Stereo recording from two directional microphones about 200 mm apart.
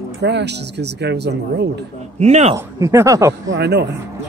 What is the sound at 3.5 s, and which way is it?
Speech, 55° right (ahead or behind).